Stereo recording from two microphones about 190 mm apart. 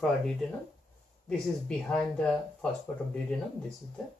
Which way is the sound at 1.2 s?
5° left (ahead or behind).